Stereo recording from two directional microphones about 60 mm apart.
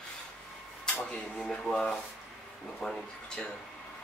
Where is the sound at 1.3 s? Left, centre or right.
Centre.